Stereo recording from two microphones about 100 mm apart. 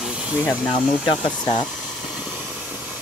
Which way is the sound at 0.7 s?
65° left (ahead or behind).